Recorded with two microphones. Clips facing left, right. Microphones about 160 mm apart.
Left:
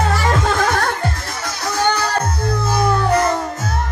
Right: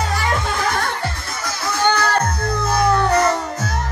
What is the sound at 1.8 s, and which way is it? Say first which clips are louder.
Music: right 1 dB; 10° left (ahead or behind).